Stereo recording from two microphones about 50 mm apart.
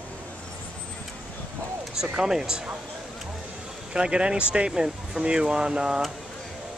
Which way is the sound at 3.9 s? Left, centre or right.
Centre.